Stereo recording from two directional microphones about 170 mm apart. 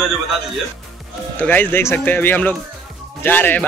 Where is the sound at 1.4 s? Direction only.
10° left (ahead or behind).